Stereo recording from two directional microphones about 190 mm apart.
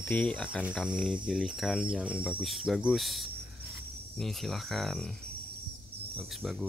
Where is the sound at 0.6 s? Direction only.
5° right (ahead or behind).